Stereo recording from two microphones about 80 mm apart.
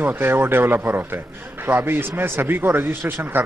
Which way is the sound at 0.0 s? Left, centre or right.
Right.